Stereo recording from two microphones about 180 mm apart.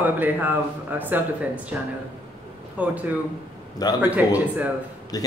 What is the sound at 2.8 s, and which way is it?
Speech, 10° right (ahead or behind).